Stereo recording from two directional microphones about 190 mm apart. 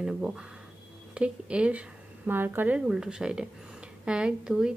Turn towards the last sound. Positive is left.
turn(degrees=-5)  # may be behind; listen again after turning